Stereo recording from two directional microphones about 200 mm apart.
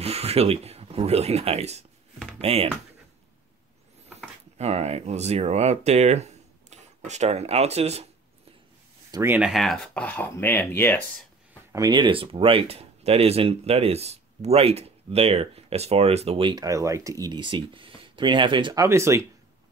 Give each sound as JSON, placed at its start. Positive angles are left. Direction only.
{"t": 0.0, "sound": "speech", "side_deg": -30}
{"t": 2.1, "sound": "a sound", "side_deg": 0}
{"t": 2.4, "sound": "speech", "side_deg": -30}
{"t": 4.6, "sound": "speech", "side_deg": -30}
{"t": 9.1, "sound": "speech", "side_deg": -10}
{"t": 11.7, "sound": "speech", "side_deg": -20}